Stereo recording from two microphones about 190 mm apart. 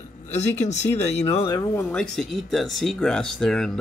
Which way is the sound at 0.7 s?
35° left (ahead or behind).